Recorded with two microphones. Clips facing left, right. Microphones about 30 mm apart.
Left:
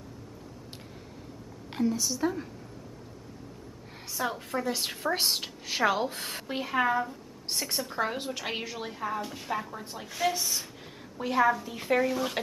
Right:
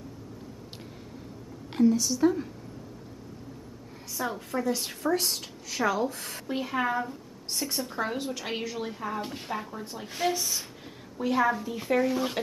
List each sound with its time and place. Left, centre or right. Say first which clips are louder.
1.7 s a woman's voice: right 5 dB; centre
4.2 s a woman's voice: even; centre
5.1 s a woman's voice: even; left
6.5 s a woman's voice: left 1 dB; centre
10.0 s speech: even; centre
10.3 s a woman's voice: right 1 dB; centre
12.1 s a woman's voice: right 2 dB; centre